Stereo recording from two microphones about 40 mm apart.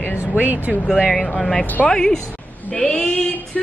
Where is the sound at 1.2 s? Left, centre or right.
Centre.